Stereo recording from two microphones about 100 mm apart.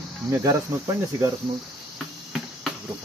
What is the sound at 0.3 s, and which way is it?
Cricket, 35° right (ahead or behind).